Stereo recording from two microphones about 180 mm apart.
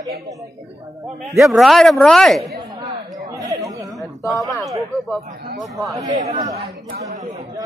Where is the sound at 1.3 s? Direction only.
Centre (ahead or behind).